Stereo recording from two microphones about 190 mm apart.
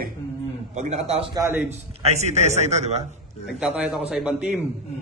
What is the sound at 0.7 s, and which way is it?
Speech, 40° right (ahead or behind).